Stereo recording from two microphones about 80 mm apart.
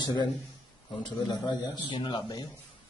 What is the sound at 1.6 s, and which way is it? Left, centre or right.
Speech, left.